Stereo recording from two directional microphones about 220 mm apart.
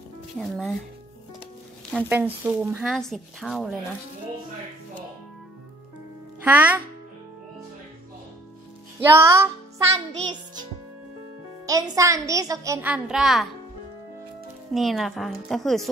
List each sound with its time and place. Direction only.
0.4 s a woman's voice: centre (ahead or behind)
2.0 s a woman's voice: 10° right (ahead or behind)
6.4 s a woman's voice: 5° right (ahead or behind)
9.1 s a woman's voice: 10° right (ahead or behind)
9.9 s music: 20° right (ahead or behind)
11.6 s a woman's voice: 15° right (ahead or behind)
14.7 s a woman's voice: centre (ahead or behind)